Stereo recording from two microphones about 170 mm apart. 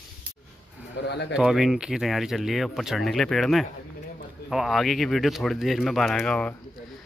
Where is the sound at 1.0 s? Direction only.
90° left.